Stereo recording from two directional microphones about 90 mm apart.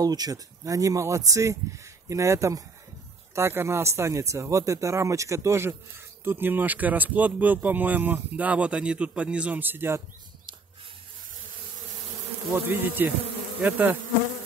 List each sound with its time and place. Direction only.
0.0 s speech: 45° right (ahead or behind); by 10.0 s 25° right (ahead or behind)
12.6 s speech: 20° right (ahead or behind)